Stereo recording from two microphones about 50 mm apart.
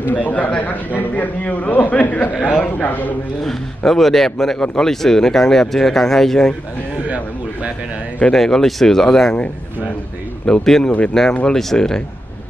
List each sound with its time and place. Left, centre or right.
0.1 s a man's voice: left
3.4 s speech: centre
8.3 s speech: centre
10.4 s speech: centre
10.8 s speech: left
11.5 s speech: centre